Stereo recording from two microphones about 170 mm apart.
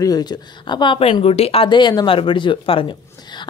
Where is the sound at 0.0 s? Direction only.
25° left (ahead or behind).